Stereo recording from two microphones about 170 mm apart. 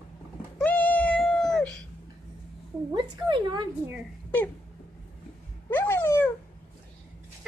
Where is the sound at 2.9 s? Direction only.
25° right (ahead or behind).